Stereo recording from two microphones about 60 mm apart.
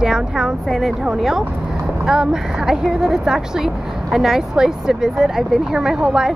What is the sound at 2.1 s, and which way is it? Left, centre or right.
Speech, centre.